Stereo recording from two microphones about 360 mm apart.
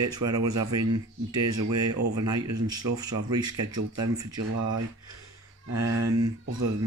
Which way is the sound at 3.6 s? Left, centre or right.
Right.